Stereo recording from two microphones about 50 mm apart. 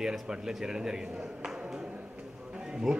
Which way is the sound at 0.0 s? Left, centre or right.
Centre.